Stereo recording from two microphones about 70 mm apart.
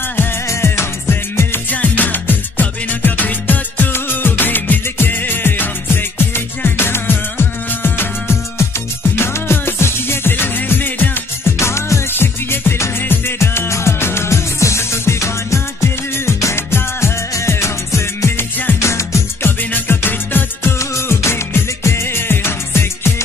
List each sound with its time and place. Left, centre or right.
0.5 s music: left
11.5 s music: left
19.7 s music: left